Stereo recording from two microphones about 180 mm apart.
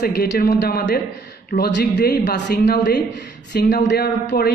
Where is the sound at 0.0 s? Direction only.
55° left (ahead or behind).